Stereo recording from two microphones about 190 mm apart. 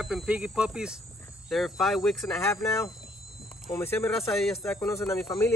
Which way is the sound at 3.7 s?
10° left (ahead or behind).